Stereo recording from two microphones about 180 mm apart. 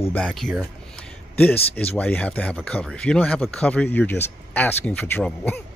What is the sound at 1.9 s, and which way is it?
Speech, 10° left (ahead or behind).